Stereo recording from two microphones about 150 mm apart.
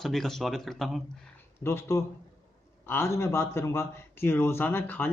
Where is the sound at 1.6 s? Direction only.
15° left (ahead or behind).